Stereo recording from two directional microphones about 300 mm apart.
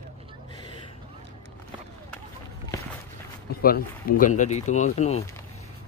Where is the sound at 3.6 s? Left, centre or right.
Left.